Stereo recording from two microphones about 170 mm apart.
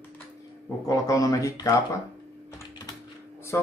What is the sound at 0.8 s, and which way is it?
Speech, 20° left (ahead or behind).